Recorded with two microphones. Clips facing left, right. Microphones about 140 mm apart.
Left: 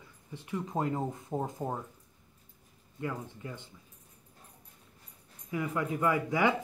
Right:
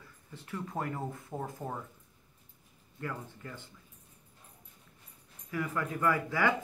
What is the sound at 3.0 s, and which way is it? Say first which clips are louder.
Speech: left 3 dB; 15° left (ahead or behind).